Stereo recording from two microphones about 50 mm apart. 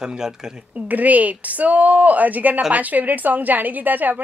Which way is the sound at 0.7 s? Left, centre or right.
Right.